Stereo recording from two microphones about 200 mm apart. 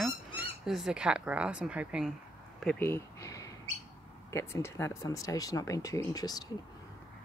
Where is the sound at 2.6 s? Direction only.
10° left (ahead or behind).